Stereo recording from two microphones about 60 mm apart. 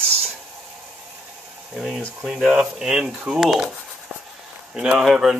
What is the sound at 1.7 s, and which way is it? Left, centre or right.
Speech, centre.